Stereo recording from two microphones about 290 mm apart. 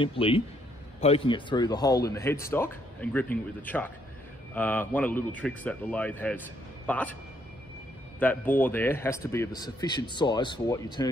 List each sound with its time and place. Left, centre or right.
0.0 s a man's voice: centre
8.2 s speech: centre